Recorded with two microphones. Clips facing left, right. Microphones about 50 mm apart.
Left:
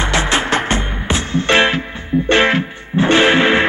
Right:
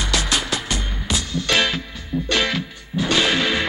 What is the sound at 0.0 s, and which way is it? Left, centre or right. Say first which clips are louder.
Music: left 6 dB; left.